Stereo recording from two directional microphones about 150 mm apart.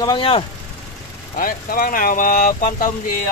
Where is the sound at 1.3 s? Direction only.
70° left (ahead or behind).